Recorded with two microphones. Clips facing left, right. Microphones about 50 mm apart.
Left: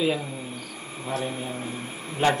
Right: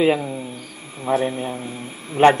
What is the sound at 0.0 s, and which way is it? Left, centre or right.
A man's voice, right.